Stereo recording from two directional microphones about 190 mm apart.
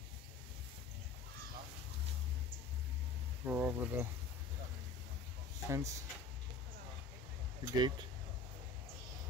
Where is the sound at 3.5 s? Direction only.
10° right (ahead or behind).